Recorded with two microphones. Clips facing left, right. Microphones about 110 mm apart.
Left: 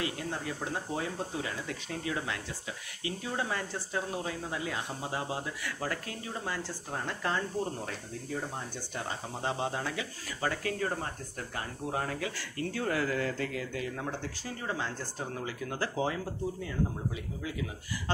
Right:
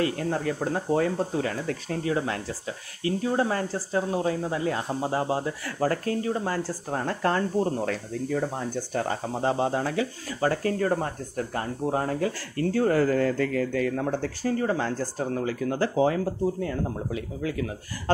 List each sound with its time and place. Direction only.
0.0 s speech: 45° right (ahead or behind)
7.8 s speech: 85° right
8.9 s speech: 50° right (ahead or behind)
9.3 s speech: 35° right (ahead or behind)
16.6 s speech: 60° right (ahead or behind)